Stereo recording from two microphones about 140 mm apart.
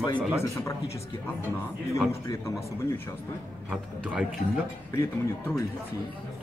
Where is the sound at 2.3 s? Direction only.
20° left (ahead or behind).